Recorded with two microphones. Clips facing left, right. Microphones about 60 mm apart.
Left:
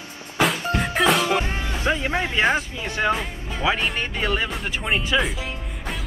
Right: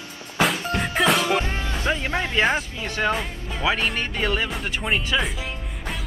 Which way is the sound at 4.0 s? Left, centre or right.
Centre.